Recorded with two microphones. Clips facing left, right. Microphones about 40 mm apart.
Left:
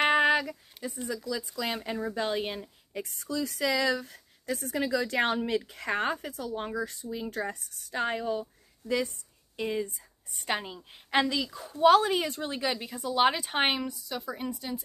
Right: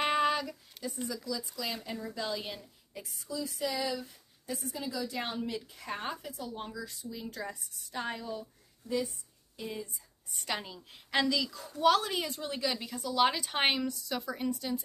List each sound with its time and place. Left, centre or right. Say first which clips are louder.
0.0 s a sound: left 5 dB; left
1.0 s a woman's voice: left 5 dB; left
8.8 s a woman's voice: left 4 dB; left
9.1 s speech: left 7 dB; left
10.4 s a woman's voice: left 5 dB; left
12.8 s a woman's voice: left 3 dB; left
14.0 s a woman's voice: even; centre